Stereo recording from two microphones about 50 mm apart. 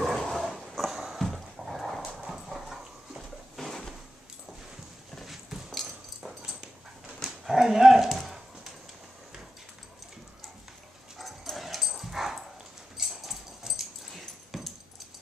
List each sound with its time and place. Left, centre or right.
0.3 s dog: centre
2.0 s horse: centre
3.2 s a sound: centre
5.1 s clip-clop: centre
5.8 s dog: centre
7.2 s dog: centre
11.5 s dog: centre